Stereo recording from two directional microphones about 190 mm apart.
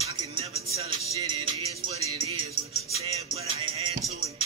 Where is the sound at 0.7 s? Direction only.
35° right (ahead or behind).